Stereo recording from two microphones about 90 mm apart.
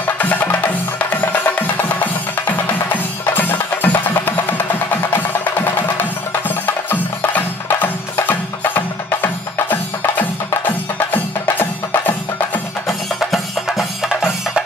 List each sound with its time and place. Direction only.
0.0 s music: 20° left (ahead or behind)
12.8 s music: centre (ahead or behind)